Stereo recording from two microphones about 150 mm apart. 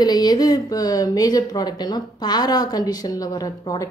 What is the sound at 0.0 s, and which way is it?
Speech, 25° left (ahead or behind).